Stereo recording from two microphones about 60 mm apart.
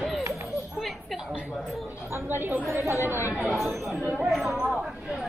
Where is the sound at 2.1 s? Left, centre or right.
Right.